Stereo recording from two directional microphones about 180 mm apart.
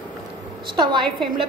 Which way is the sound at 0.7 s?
25° right (ahead or behind).